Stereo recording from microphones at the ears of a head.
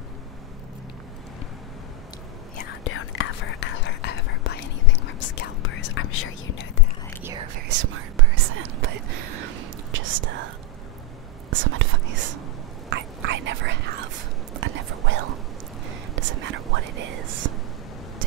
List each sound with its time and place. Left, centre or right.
2.5 s whispering: left
7.2 s whispering: right
11.5 s whispering: right